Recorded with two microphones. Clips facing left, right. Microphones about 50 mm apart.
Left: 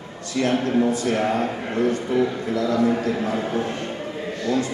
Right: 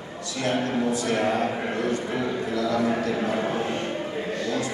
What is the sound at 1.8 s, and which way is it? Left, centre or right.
Speech, right.